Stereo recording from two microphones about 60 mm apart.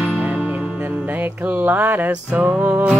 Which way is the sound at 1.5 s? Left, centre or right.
Right.